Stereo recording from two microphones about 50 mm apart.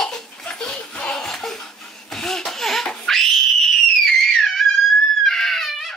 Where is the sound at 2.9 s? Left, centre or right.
Centre.